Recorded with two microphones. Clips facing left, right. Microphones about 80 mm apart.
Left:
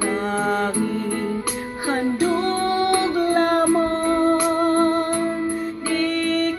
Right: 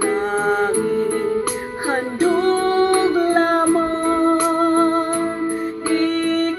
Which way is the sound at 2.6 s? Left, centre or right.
Right.